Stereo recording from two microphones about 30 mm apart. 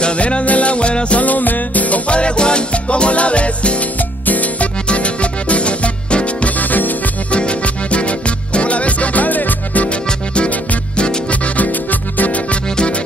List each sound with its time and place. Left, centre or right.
0.2 s music: left
1.2 s music: left
2.0 s music: left
4.3 s music: left
4.8 s music: left
6.6 s music: left
7.2 s music: left
11.4 s music: left